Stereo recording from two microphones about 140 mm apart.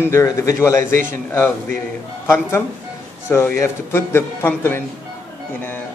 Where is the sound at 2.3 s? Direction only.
20° left (ahead or behind).